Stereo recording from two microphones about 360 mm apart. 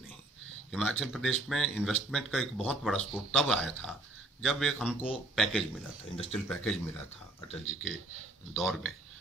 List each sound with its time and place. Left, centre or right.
0.7 s speech: centre
7.6 s speech: right
8.5 s speech: centre